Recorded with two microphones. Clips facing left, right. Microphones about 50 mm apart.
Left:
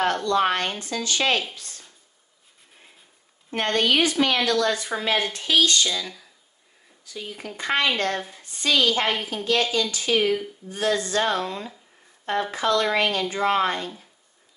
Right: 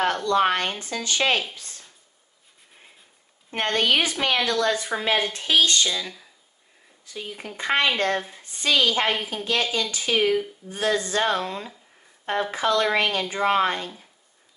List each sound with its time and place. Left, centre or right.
0.0 s speech: centre
3.5 s speech: right
5.9 s a woman's voice: centre
10.7 s a woman's voice: right